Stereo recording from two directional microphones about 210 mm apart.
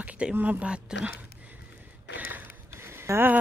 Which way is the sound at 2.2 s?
10° right (ahead or behind).